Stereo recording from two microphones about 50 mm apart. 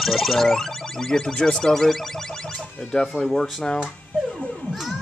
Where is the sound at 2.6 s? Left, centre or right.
Centre.